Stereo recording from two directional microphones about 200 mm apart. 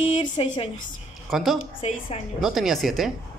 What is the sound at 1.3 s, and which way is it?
A woman's voice, centre (ahead or behind).